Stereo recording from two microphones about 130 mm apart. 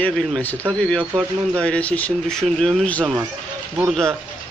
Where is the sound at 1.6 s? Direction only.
10° left (ahead or behind).